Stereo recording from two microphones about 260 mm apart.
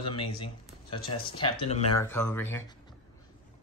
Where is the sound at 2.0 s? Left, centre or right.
Centre.